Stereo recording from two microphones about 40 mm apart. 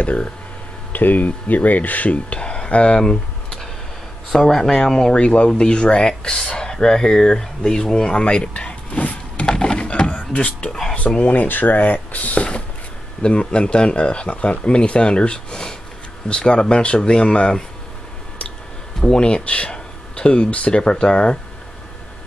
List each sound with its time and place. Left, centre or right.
0.0 s speech: left
0.9 s speech: left
4.3 s speech: centre
5.2 s speech: left
9.0 s a sound: left
9.5 s a sound: left
11.0 s speech: left
13.2 s speech: left
18.9 s speech: left